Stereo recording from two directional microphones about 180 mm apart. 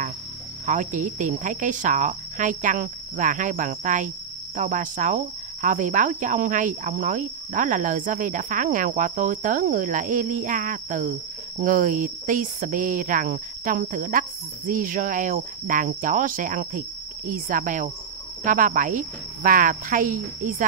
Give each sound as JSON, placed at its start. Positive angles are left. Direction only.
{"t": 0.7, "sound": "speech", "side_deg": -45}